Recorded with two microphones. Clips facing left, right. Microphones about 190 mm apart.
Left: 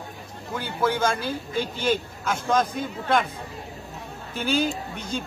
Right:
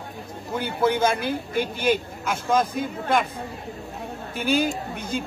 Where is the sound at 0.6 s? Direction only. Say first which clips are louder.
Right 3 dB; 20° right (ahead or behind).